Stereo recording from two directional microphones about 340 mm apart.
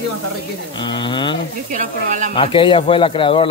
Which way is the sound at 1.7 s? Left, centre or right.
Right.